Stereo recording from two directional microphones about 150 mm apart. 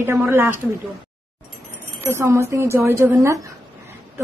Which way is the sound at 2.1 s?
20° right (ahead or behind).